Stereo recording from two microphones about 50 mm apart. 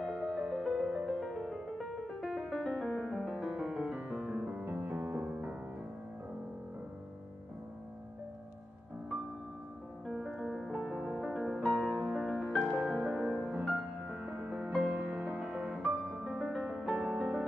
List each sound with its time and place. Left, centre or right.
0.0 s music: centre
3.1 s music: centre
4.2 s music: right
4.6 s music: right
10.0 s music: centre
12.0 s music: centre
12.4 s music: centre
13.7 s music: right
14.4 s music: centre
14.9 s music: right
15.3 s music: centre
16.3 s music: centre